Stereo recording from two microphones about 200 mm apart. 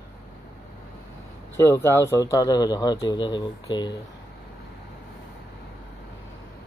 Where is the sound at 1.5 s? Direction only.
15° left (ahead or behind).